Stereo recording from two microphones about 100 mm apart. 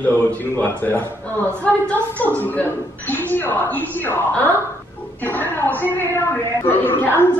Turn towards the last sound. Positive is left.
turn(degrees=20)  # may be behind; listen again after turning